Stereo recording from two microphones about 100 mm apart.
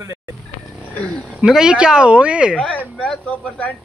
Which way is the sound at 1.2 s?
5° right (ahead or behind).